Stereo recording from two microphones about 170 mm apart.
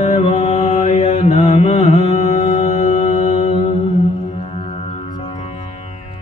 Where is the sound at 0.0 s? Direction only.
35° left (ahead or behind).